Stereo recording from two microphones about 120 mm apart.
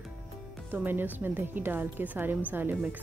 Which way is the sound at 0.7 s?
15° right (ahead or behind).